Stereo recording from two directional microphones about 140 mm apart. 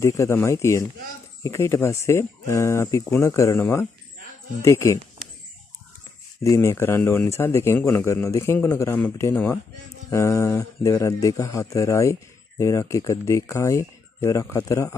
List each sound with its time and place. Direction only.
0.0 s speech: 20° left (ahead or behind)
6.4 s speech: 20° left (ahead or behind)